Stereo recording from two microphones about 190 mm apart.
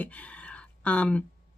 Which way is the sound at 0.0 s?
5° left (ahead or behind).